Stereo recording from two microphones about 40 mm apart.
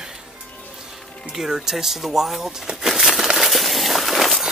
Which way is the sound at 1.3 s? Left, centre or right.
Centre.